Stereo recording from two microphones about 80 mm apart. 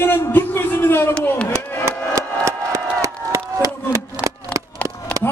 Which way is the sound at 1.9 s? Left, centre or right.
Right.